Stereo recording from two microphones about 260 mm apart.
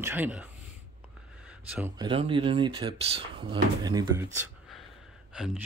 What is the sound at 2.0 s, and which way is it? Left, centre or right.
Speech, centre.